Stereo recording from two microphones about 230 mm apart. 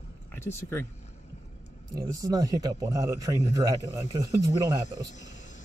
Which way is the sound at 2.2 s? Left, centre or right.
Centre.